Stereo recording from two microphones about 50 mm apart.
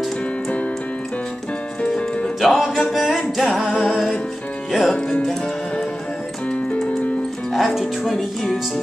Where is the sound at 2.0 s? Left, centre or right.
Left.